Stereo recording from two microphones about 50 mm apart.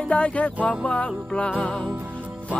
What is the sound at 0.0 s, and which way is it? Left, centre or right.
Music, left.